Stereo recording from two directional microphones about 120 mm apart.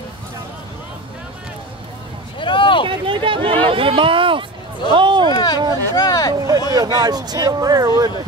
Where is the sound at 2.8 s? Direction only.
45° right (ahead or behind).